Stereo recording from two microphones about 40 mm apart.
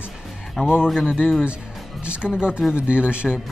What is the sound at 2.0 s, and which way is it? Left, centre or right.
Speech, right.